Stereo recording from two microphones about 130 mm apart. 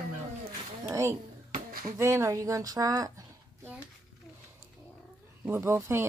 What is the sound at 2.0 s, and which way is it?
Speech, 20° right (ahead or behind).